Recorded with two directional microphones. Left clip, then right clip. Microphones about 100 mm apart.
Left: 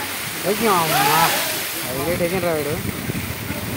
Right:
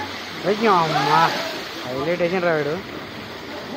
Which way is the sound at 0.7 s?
10° left (ahead or behind).